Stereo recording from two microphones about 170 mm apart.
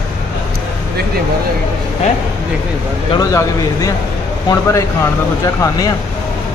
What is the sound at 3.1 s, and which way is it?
Speech, 20° left (ahead or behind).